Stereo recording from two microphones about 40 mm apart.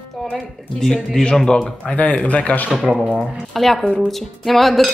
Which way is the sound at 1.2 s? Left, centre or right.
Left.